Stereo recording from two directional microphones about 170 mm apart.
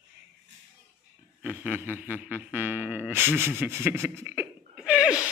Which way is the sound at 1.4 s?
10° right (ahead or behind).